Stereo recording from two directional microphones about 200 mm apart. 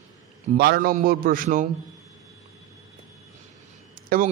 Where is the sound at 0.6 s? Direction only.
50° right (ahead or behind).